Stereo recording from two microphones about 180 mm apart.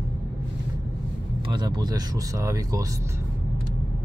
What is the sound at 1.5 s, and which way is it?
Speech, 25° right (ahead or behind).